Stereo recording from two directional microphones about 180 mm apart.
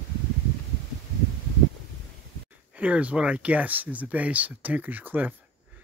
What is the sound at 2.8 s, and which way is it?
Speech, 10° right (ahead or behind).